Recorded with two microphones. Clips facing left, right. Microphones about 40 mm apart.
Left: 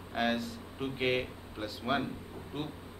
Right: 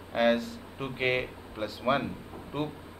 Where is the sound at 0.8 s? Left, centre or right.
Right.